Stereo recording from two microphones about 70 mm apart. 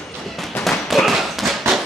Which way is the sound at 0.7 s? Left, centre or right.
Centre.